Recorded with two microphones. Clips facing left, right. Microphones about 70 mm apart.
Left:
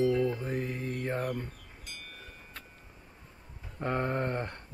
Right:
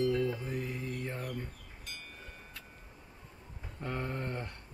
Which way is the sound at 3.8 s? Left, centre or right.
Left.